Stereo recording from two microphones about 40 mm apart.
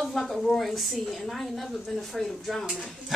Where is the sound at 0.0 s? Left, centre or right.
Centre.